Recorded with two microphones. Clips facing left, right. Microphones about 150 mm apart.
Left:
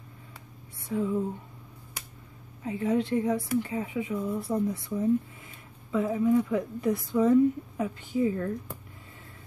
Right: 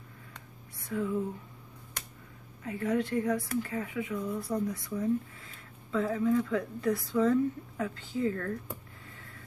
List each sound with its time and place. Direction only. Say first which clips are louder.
0.8 s speech: left 3 dB; 20° left (ahead or behind)
2.6 s speech: left 3 dB; 20° left (ahead or behind)